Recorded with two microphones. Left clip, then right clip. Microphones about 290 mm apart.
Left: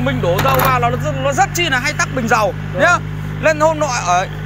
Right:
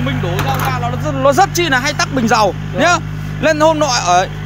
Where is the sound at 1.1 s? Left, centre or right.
Right.